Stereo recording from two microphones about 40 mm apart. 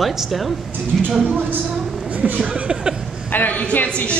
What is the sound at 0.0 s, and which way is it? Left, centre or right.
Speech, centre.